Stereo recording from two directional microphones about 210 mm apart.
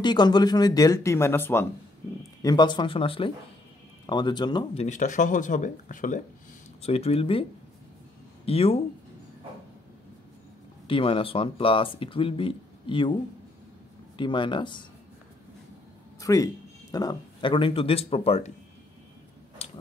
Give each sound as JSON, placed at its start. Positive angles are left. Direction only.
{"t": 0.0, "sound": "speech", "side_deg": 20}
{"t": 4.8, "sound": "speech", "side_deg": 35}
{"t": 8.5, "sound": "speech", "side_deg": 30}
{"t": 10.9, "sound": "speech", "side_deg": 25}
{"t": 16.2, "sound": "speech", "side_deg": 15}